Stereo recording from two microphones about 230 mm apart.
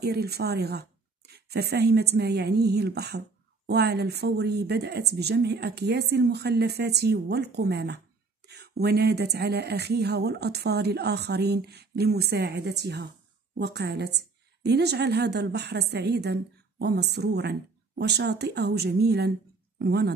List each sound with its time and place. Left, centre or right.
0.0 s a woman's voice: right